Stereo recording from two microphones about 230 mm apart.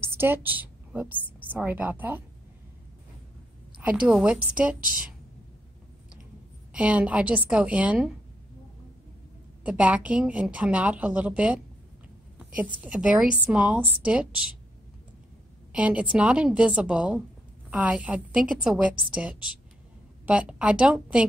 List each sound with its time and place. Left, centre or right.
0.0 s a woman's voice: centre
3.8 s a woman's voice: centre
4.7 s a woman's voice: right
6.7 s a woman's voice: centre
9.6 s a woman's voice: centre
15.7 s a woman's voice: centre